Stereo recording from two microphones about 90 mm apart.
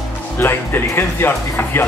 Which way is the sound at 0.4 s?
25° left (ahead or behind).